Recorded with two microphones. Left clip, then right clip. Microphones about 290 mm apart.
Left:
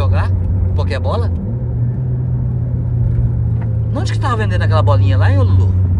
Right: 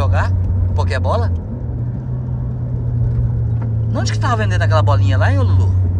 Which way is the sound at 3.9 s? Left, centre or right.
Centre.